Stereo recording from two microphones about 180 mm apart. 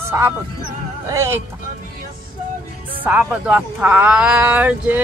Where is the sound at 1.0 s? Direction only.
15° right (ahead or behind).